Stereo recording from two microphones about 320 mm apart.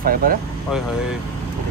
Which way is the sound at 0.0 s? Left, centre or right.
Right.